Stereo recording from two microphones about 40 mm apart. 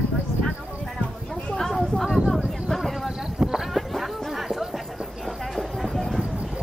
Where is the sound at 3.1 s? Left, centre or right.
Centre.